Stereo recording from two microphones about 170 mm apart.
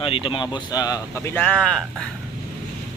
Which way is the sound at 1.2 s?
10° left (ahead or behind).